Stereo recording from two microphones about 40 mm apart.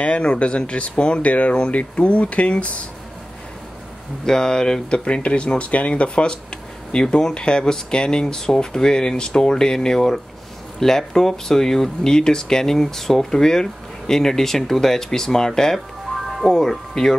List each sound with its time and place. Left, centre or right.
0.0 s speech: left
4.3 s speech: centre
4.9 s speech: left; by 17.0 s centre